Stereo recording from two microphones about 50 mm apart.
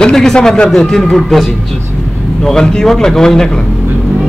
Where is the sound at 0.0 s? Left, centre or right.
Centre.